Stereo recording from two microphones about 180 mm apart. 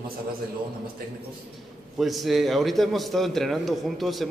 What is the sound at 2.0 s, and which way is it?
A man's voice, centre (ahead or behind).